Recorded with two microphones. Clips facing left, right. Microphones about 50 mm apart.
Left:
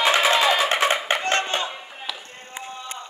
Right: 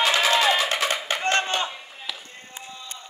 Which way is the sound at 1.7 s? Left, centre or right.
Left.